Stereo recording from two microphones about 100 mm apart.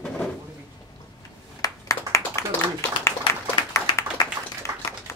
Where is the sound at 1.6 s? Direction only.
30° left (ahead or behind).